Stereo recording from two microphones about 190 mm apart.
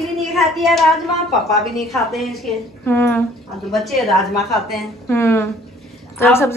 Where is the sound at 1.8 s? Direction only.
Centre (ahead or behind).